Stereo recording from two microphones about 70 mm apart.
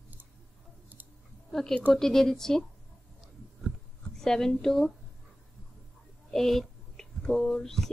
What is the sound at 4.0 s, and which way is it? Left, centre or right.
Speech, centre.